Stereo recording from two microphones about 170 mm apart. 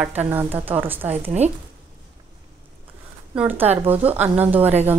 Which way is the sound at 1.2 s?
40° right (ahead or behind).